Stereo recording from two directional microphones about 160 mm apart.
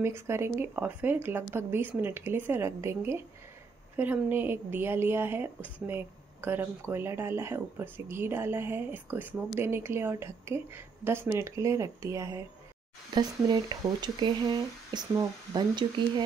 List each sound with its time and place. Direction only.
0.0 s a woman's voice: 15° right (ahead or behind)